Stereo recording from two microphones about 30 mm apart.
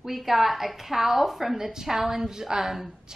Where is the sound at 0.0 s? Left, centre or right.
Centre.